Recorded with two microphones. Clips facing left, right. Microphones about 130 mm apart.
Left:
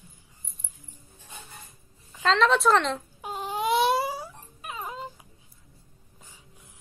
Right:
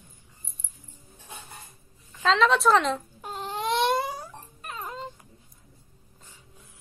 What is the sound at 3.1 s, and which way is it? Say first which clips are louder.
Dog: left 2 dB; 10° left (ahead or behind).